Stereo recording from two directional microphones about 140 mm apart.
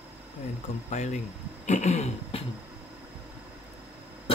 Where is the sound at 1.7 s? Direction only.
55° left (ahead or behind).